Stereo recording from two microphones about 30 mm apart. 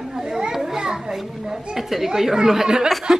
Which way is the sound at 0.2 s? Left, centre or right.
Right.